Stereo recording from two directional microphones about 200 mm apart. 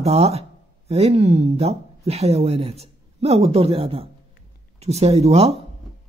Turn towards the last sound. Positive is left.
turn(degrees=-30)  # may be behind; listen again after turning